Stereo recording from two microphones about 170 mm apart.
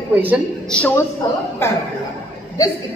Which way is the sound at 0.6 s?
10° left (ahead or behind).